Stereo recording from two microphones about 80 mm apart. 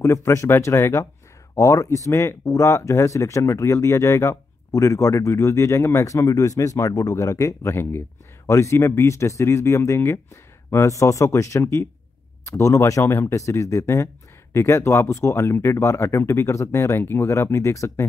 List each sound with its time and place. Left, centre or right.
0.0 s speech: left